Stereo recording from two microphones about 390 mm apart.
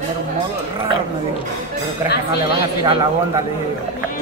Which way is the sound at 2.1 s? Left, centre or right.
Left.